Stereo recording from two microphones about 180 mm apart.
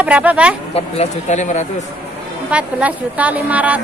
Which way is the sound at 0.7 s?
35° left (ahead or behind).